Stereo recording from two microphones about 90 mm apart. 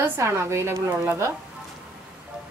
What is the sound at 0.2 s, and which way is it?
A woman's voice, 30° right (ahead or behind).